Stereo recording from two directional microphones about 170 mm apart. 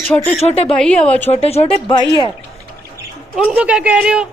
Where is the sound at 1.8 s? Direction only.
25° left (ahead or behind).